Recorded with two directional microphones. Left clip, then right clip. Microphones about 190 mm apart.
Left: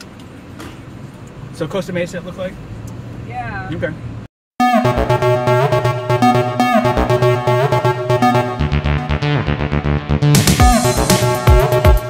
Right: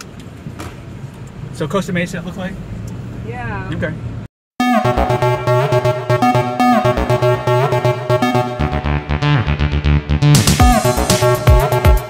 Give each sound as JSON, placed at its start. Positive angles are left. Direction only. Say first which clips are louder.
{"t": 1.6, "sound": "speech", "louder": "right 1 dB", "side_deg": -20}
{"t": 4.6, "sound": "music", "louder": "left 1 dB", "side_deg": 0}